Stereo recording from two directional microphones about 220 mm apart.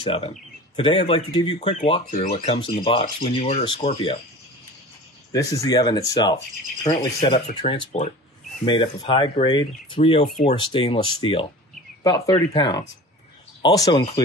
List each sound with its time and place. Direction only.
0.0 s speech: 25° left (ahead or behind)
5.3 s speech: 15° left (ahead or behind)